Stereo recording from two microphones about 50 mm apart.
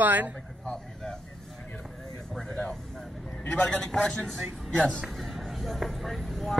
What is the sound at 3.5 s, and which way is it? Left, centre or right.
A man's voice, left.